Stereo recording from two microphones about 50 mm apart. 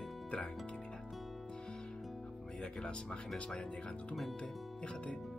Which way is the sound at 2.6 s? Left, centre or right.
Centre.